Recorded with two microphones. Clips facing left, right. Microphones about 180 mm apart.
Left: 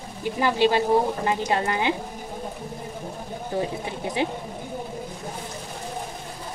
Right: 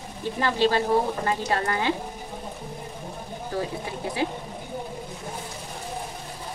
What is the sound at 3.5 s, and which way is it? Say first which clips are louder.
Frying: left 3 dB; 20° left (ahead or behind).